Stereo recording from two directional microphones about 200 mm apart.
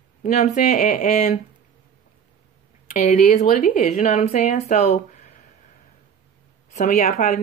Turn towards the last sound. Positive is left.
turn(degrees=40)  # may be behind; listen again after turning